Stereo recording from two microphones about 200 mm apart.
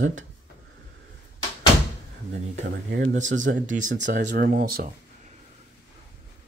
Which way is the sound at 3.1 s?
40° right (ahead or behind).